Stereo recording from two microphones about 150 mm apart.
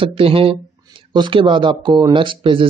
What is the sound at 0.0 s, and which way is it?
Speech, 35° right (ahead or behind).